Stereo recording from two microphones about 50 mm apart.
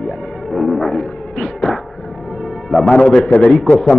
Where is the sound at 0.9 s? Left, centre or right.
Centre.